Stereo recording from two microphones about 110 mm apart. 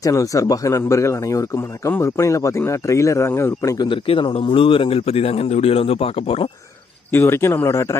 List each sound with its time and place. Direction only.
0.0 s speech: 30° left (ahead or behind)
3.7 s speech: 40° left (ahead or behind)
4.1 s speech: 60° left (ahead or behind)
7.1 s speech: 20° left (ahead or behind)